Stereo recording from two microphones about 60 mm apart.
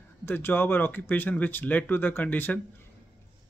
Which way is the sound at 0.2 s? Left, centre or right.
Left.